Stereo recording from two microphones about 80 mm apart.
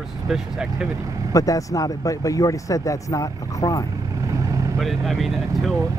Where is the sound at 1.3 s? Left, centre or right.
Left.